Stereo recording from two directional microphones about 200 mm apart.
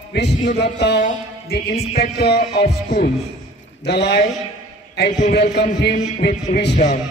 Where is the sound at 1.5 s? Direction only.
55° left (ahead or behind).